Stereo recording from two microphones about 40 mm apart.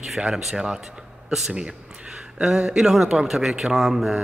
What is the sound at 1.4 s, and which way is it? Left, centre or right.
A man's voice, right.